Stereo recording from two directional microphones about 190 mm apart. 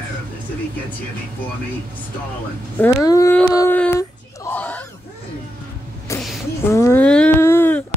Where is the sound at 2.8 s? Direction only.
15° left (ahead or behind).